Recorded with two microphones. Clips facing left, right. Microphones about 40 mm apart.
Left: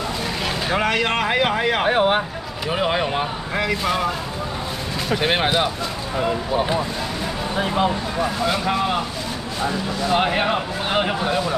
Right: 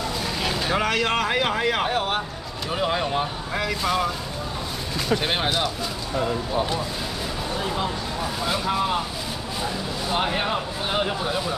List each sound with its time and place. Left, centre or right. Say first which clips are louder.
0.7 s speech: left 3 dB; centre
1.9 s speech: left 7 dB; left
3.6 s speech: left 2 dB; centre
5.2 s speech: left 5 dB; left
7.5 s speech: left 7 dB; left
10.1 s speech: left 4 dB; left